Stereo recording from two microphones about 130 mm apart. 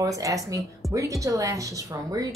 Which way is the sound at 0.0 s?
25° right (ahead or behind).